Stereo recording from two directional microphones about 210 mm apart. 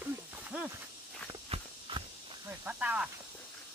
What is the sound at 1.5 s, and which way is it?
Walk, 25° right (ahead or behind).